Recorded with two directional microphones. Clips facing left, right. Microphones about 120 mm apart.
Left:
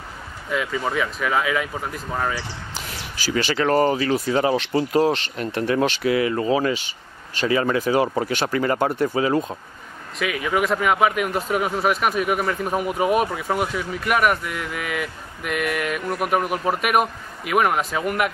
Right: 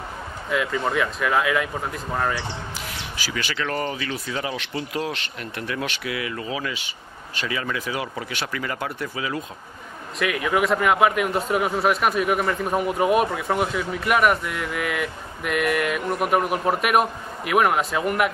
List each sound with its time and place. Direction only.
0.5 s speech: centre (ahead or behind)
3.2 s speech: 35° left (ahead or behind)
10.1 s speech: centre (ahead or behind)